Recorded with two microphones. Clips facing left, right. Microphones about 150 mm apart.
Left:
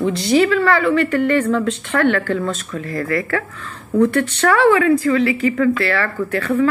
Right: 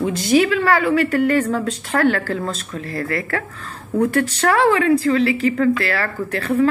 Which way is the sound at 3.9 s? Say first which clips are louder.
Left 2 dB; 35° right (ahead or behind).